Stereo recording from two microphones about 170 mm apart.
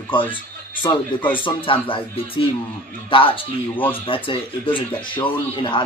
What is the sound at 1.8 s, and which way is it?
Speech, 30° left (ahead or behind).